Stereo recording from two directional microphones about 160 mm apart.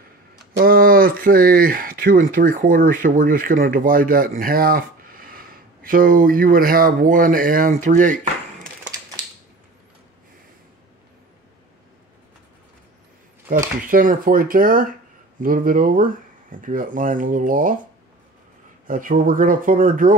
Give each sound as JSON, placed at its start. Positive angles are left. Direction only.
{"t": 0.6, "sound": "speech", "side_deg": -65}
{"t": 13.8, "sound": "speech", "side_deg": -60}
{"t": 18.9, "sound": "speech", "side_deg": -60}